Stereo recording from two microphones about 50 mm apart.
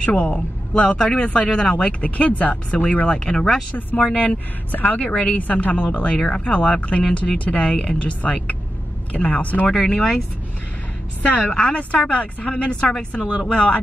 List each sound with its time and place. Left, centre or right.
0.0 s a woman's voice: left
3.1 s speech: centre
3.7 s speech: left
5.4 s a woman's voice: left
6.1 s a woman's voice: centre
9.9 s speech: centre
11.4 s speech: left